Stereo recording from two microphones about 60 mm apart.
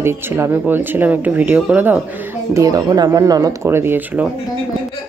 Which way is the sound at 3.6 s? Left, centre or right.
Right.